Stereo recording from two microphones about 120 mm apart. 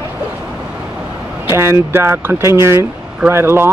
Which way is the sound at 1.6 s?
20° right (ahead or behind).